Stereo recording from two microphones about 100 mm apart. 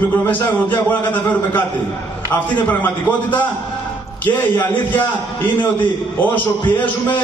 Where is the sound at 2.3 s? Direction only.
20° left (ahead or behind).